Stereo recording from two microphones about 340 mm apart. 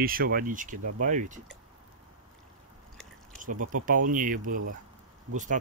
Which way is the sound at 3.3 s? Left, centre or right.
Right.